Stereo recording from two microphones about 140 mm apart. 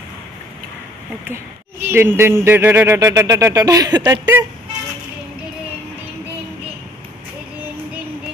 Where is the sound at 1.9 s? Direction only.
15° right (ahead or behind).